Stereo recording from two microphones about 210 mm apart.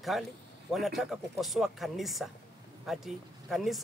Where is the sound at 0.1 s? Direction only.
Centre (ahead or behind).